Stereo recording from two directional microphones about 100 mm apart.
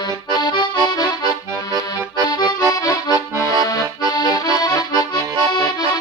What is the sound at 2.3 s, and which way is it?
Accordion, 40° left (ahead or behind).